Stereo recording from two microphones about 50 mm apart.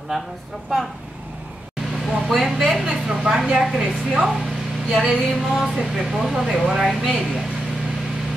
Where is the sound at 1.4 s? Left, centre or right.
Centre.